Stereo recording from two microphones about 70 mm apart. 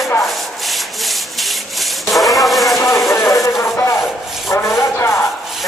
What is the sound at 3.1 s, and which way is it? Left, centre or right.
Insect, left.